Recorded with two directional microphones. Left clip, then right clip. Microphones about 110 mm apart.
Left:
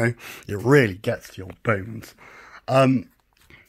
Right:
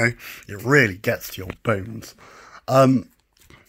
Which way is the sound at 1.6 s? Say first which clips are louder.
Even; 15° right (ahead or behind).